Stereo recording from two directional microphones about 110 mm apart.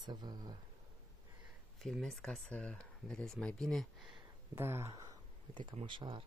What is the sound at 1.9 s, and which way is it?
Speech, 5° left (ahead or behind).